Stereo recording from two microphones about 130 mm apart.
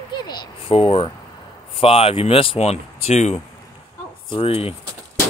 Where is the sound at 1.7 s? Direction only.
45° left (ahead or behind).